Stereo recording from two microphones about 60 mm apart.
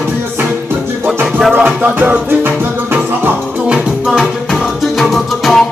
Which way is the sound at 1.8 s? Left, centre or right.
Right.